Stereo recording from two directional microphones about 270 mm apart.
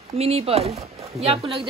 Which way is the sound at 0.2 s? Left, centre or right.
Right.